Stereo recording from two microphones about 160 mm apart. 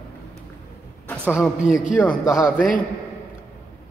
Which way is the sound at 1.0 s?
10° left (ahead or behind).